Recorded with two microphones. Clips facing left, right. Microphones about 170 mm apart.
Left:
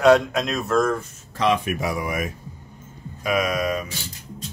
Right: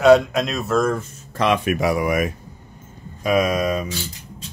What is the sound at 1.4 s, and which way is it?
Speech, 70° right (ahead or behind).